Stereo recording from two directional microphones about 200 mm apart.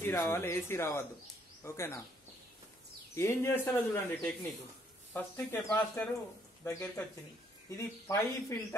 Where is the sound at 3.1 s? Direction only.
10° left (ahead or behind).